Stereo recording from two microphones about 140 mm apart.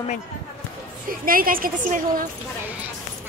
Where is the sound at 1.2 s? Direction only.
90° right.